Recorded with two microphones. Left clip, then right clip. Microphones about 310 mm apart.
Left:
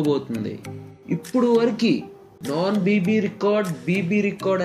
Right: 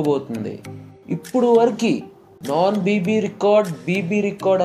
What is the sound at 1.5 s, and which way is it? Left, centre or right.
Speech, centre.